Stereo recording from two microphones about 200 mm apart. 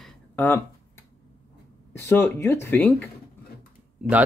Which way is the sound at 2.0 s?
10° left (ahead or behind).